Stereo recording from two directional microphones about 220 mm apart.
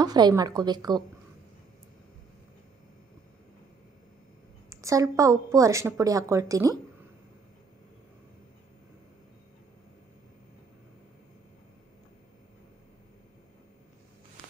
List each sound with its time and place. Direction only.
0.0 s a woman's voice: 20° right (ahead or behind)
4.6 s a sound: 15° right (ahead or behind)
5.1 s a woman's voice: 15° right (ahead or behind)